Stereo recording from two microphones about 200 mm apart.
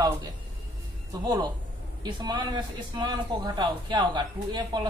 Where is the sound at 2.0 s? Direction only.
20° right (ahead or behind).